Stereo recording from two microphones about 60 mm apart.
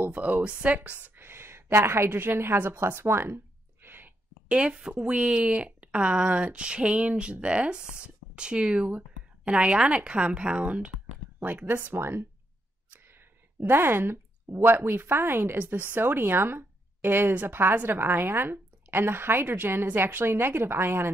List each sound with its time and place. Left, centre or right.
0.0 s speech: right
1.1 s a sound: right
2.0 s speech: right
4.5 s speech: centre
11.3 s speech: right
12.9 s a sound: right
14.8 s speech: right